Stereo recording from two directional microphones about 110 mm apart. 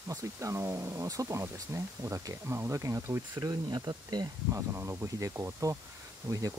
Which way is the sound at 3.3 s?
40° right (ahead or behind).